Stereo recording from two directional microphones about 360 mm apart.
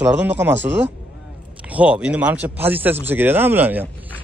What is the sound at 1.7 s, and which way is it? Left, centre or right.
A man's voice, centre.